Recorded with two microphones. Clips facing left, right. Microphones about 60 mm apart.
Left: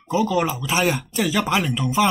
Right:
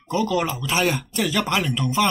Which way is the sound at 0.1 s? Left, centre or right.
Centre.